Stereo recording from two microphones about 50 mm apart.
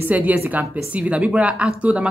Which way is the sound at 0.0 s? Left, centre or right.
Right.